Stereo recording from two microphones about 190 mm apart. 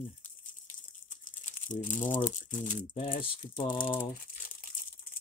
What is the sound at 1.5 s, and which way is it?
Speech, 40° left (ahead or behind).